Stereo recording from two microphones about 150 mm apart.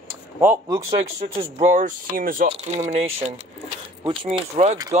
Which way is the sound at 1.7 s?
55° right (ahead or behind).